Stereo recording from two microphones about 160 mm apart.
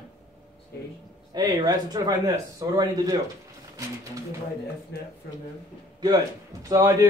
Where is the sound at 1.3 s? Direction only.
25° right (ahead or behind).